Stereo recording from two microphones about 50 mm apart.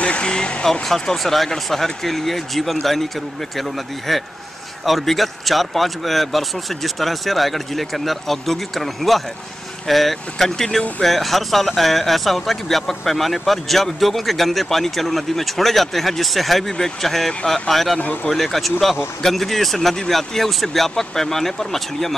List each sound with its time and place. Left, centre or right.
0.0 s speech: left
0.8 s speech: centre